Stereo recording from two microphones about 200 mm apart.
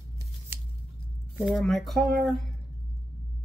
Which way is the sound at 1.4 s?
Centre (ahead or behind).